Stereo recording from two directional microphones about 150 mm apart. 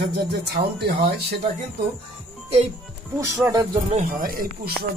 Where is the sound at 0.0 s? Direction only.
90° right.